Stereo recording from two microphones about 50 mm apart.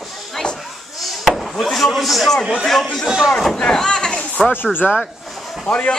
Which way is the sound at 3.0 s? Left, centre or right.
Centre.